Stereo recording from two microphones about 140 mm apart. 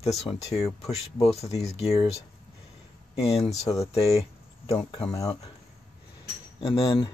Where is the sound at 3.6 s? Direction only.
25° left (ahead or behind).